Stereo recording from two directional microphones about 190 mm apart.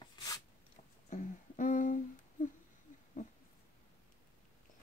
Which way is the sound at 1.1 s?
40° left (ahead or behind).